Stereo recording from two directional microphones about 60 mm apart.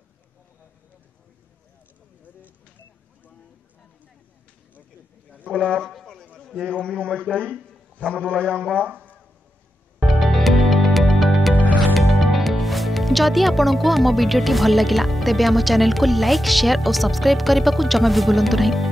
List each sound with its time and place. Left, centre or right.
5.5 s a man's voice: left
5.8 s a sound: centre
6.4 s a man's voice: centre
10.2 s music: centre
12.1 s speech: centre